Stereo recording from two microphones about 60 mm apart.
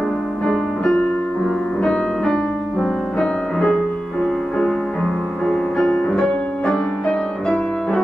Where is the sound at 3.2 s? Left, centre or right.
Centre.